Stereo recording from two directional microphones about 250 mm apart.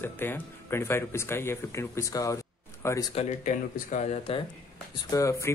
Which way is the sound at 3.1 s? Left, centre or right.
Left.